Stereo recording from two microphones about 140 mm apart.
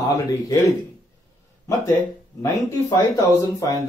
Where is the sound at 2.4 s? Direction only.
25° left (ahead or behind).